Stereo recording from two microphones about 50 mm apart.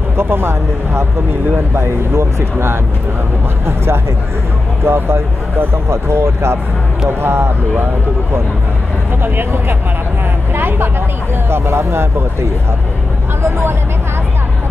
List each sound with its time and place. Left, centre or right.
0.2 s speech: right
9.2 s a woman's voice: right